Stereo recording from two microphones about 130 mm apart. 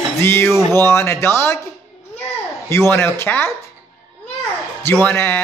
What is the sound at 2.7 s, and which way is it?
Speech, 20° left (ahead or behind).